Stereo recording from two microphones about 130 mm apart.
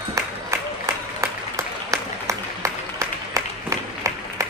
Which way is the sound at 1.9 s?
25° right (ahead or behind).